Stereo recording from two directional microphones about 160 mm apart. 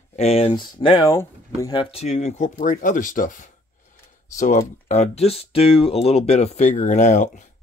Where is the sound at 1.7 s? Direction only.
35° left (ahead or behind); by 7.4 s 50° left (ahead or behind).